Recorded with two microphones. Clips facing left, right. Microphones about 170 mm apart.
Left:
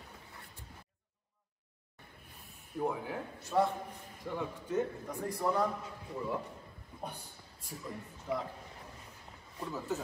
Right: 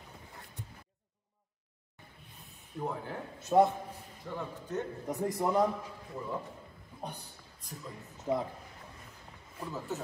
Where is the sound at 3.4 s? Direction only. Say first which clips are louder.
Right 6 dB; 20° right (ahead or behind).